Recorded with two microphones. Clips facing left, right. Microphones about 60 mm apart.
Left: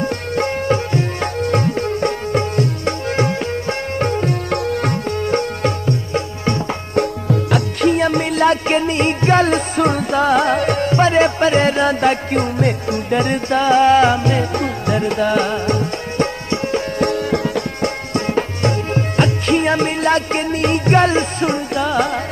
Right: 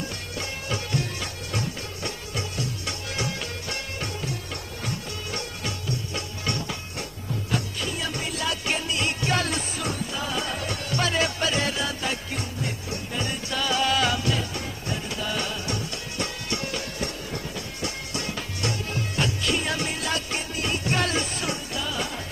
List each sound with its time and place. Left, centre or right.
0.0 s music: left
6.4 s music: left
7.0 s music: left
10.9 s music: left
13.6 s music: left
14.5 s music: left
17.0 s music: left
17.8 s music: left